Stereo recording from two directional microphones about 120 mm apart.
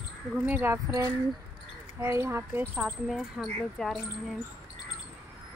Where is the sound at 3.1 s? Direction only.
Centre (ahead or behind).